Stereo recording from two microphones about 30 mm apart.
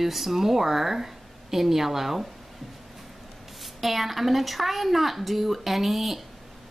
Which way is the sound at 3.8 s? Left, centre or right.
Centre.